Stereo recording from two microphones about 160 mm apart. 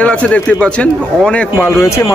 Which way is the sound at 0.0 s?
10° left (ahead or behind).